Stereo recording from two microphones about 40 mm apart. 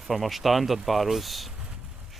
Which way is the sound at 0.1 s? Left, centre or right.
Centre.